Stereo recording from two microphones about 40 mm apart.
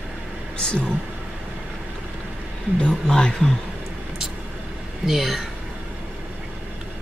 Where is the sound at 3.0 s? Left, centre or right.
Centre.